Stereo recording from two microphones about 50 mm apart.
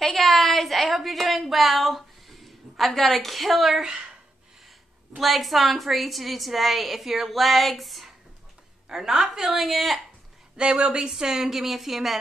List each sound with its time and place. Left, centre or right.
0.0 s a sound: centre
5.1 s a woman's voice: centre
10.6 s a woman's voice: right
11.1 s a woman's voice: centre